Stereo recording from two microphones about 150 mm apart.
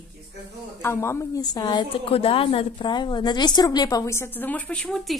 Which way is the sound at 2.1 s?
40° left (ahead or behind).